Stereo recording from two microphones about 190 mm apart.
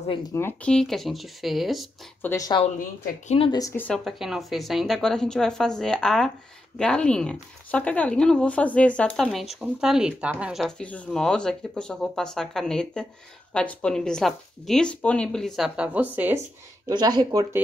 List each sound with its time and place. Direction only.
0.3 s speech: 10° left (ahead or behind)
2.2 s a woman's voice: 20° left (ahead or behind)
3.3 s speech: 30° left (ahead or behind)
3.6 s speech: 10° left (ahead or behind); by 16.1 s 5° right (ahead or behind)
16.9 s speech: 20° right (ahead or behind)